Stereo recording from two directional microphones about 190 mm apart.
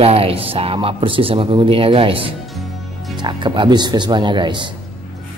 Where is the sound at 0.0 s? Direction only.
30° right (ahead or behind).